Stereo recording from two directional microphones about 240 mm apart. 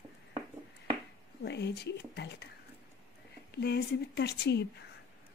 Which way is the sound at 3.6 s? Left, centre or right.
Left.